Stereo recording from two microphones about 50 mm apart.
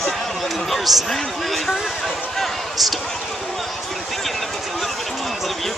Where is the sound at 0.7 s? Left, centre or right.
Centre.